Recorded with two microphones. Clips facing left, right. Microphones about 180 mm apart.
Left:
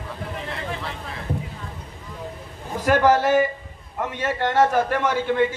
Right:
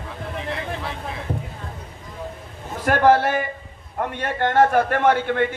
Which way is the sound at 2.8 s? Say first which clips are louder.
Right 1 dB; 50° right (ahead or behind).